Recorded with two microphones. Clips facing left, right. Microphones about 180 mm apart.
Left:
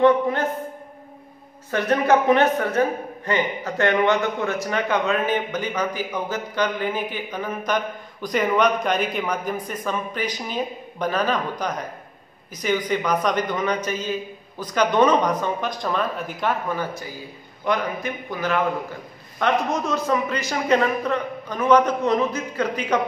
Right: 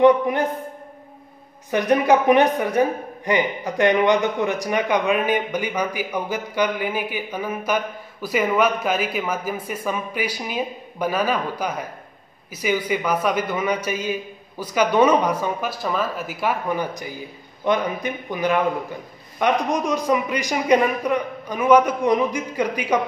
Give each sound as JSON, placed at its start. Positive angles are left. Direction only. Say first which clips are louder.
{"t": 0.0, "sound": "a woman's voice", "louder": "right 2 dB", "side_deg": -15}
{"t": 1.7, "sound": "a woman's voice", "louder": "right 2 dB", "side_deg": -15}